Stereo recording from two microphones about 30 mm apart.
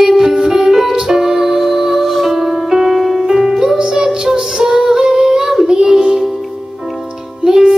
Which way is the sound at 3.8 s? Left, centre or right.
Right.